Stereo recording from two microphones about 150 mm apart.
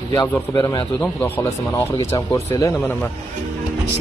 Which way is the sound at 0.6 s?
30° left (ahead or behind).